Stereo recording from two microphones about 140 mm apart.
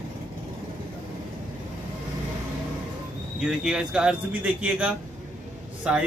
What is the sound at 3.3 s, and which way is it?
Speech, 5° right (ahead or behind).